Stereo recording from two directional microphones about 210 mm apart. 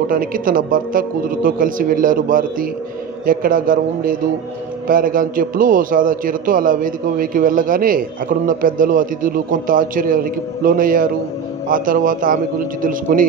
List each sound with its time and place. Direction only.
0.0 s a man's voice: 40° right (ahead or behind)